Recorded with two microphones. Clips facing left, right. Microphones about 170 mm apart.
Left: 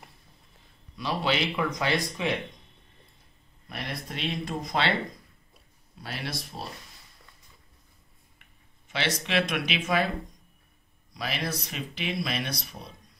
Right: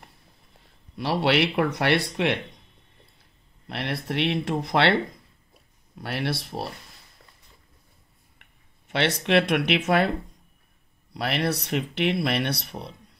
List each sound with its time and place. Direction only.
0.9 s speech: 70° right (ahead or behind)
3.6 s speech: 70° right (ahead or behind)
5.9 s speech: 65° right (ahead or behind)
8.4 s speech: 60° right (ahead or behind)
11.1 s speech: 65° right (ahead or behind)